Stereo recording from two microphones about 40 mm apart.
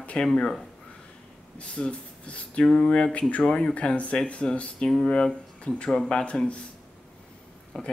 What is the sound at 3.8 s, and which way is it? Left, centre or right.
Speech, left.